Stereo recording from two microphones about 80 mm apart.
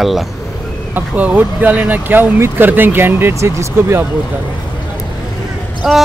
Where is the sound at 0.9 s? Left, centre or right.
Right.